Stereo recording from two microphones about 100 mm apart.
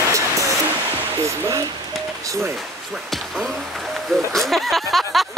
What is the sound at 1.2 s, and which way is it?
Speech, 35° right (ahead or behind).